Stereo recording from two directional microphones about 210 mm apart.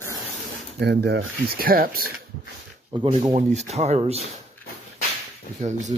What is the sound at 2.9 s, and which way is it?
Speech, 20° right (ahead or behind).